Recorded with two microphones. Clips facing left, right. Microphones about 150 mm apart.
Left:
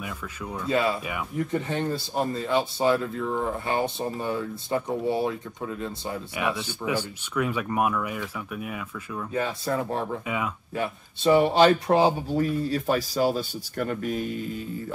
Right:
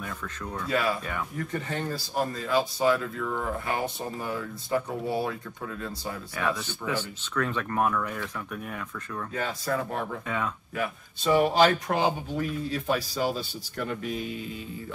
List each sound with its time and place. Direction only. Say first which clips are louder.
0.7 s speech: left 3 dB; 25° left (ahead or behind)
10.7 s speech: left 2 dB; 25° left (ahead or behind); by 14.6 s 45° left (ahead or behind)